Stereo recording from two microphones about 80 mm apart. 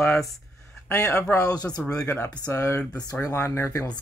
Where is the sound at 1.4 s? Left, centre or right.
Left.